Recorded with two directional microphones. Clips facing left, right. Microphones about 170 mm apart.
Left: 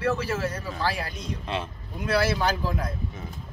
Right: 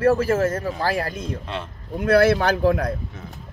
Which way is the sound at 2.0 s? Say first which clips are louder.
Right 8 dB; 60° right (ahead or behind).